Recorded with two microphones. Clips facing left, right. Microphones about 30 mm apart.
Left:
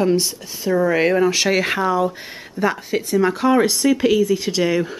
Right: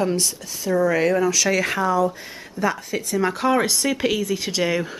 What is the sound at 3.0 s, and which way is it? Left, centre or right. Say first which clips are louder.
Speech: left 3 dB; centre.